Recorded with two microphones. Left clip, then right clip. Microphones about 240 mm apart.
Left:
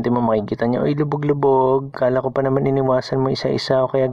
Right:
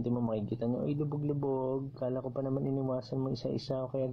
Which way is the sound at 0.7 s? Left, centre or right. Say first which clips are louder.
Left 16 dB; left.